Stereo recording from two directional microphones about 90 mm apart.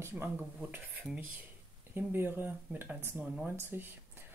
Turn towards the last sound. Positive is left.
turn(degrees=-25)  # may be behind; listen again after turning